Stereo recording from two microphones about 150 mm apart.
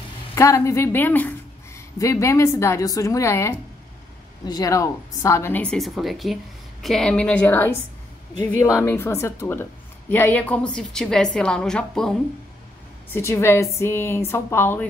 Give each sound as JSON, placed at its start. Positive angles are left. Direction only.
{"t": 0.3, "sound": "a woman's voice", "side_deg": 20}
{"t": 13.1, "sound": "a woman's voice", "side_deg": 15}